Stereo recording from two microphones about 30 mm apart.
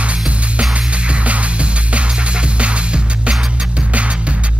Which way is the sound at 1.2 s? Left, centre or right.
Right.